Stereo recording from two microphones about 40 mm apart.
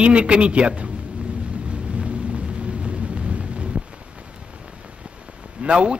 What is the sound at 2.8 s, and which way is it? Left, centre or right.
Thunder, right.